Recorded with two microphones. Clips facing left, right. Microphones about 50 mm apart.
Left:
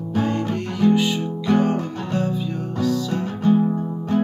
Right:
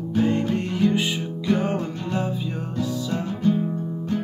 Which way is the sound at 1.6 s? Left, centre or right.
Centre.